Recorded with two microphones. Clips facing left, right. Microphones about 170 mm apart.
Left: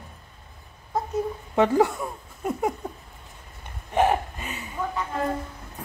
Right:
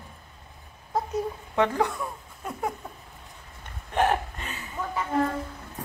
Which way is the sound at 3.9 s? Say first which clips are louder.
Left 2 dB; 10° left (ahead or behind).